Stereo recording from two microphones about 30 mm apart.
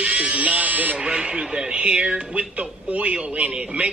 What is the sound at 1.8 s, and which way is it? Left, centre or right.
A man's voice, right.